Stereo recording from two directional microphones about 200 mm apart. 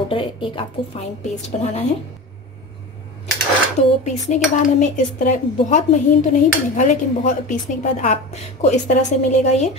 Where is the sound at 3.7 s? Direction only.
35° left (ahead or behind).